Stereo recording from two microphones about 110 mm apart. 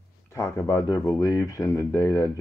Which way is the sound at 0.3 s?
30° left (ahead or behind).